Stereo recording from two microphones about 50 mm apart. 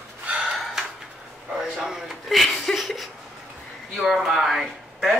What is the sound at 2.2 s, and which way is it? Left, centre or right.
Speech, centre.